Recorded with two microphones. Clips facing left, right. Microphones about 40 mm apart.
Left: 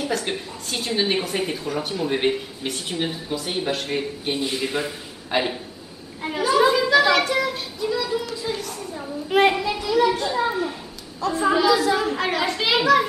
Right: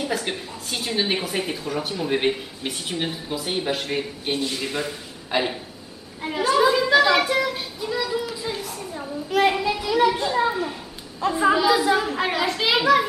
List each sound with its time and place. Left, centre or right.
0.0 s a woman's voice: centre
4.4 s a man's voice: centre
6.7 s a sound: centre
9.5 s a woman's voice: centre
11.1 s a child's voice: right; by 13.0 s centre